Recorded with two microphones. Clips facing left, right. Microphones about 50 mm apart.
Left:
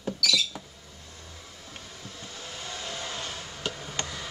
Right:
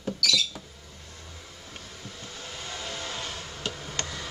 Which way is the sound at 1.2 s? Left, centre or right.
Centre.